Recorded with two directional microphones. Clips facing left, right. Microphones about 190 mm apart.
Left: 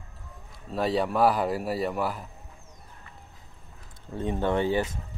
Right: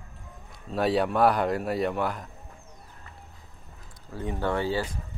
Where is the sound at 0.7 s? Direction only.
Centre (ahead or behind).